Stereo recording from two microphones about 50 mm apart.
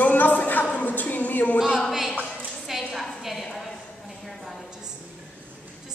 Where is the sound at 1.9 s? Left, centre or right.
Centre.